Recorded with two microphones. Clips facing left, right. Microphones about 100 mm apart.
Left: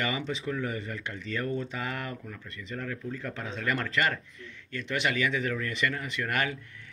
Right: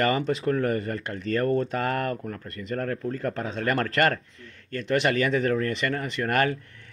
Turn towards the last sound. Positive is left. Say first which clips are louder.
# right 7 dB
turn(degrees=-40)  # may be behind; listen again after turning